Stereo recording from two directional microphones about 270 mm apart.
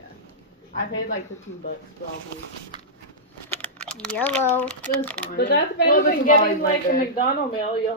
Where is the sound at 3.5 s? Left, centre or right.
Centre.